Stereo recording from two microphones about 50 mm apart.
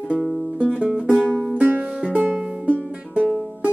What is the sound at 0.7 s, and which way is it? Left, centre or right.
Music, right.